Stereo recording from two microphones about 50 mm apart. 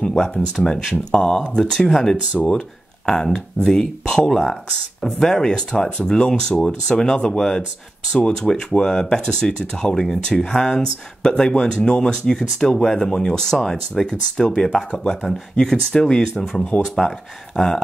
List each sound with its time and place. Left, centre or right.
0.0 s speech: centre
16.8 s speech: centre